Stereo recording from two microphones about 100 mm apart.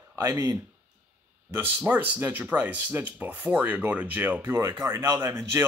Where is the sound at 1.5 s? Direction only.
20° right (ahead or behind).